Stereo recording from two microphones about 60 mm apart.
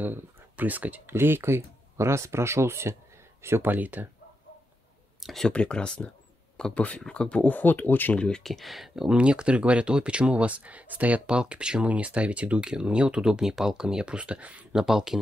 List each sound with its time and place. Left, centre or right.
0.0 s speech: right
1.1 s speech: right
3.6 s speech: right
5.2 s speech: centre
5.5 s speech: centre
8.2 s speech: centre
9.1 s speech: centre
14.7 s speech: centre